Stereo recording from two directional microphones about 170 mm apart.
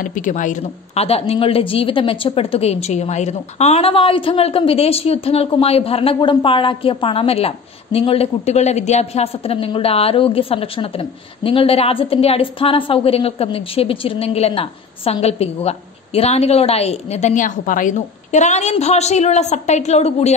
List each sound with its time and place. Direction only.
0.0 s a woman's voice: 50° left (ahead or behind)